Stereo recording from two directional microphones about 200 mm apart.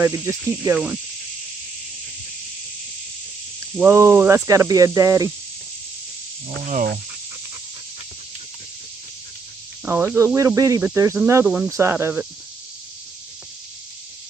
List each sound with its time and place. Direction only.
0.0 s speech: 15° right (ahead or behind)
3.7 s speech: 10° right (ahead or behind)
6.6 s speech: 40° right (ahead or behind)
9.8 s speech: 10° right (ahead or behind)